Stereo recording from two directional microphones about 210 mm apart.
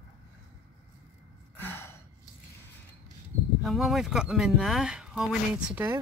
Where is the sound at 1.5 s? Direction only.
10° left (ahead or behind).